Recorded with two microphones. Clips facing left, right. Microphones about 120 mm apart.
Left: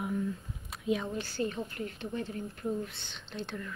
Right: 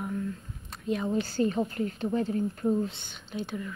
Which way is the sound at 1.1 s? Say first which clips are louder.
Right 7 dB; 35° right (ahead or behind).